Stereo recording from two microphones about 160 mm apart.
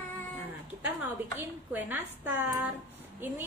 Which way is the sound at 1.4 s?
10° right (ahead or behind).